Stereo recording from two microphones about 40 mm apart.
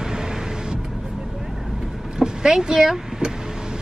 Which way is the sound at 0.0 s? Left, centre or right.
Centre.